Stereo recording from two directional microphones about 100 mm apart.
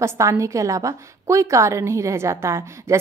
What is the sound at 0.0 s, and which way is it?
A woman's voice, 30° right (ahead or behind).